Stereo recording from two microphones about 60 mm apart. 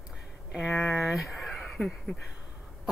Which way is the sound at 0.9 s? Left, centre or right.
Centre.